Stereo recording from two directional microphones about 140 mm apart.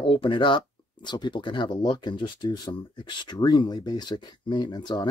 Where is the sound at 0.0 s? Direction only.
35° left (ahead or behind).